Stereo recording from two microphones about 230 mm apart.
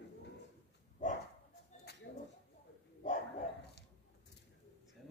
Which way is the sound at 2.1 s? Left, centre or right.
Left.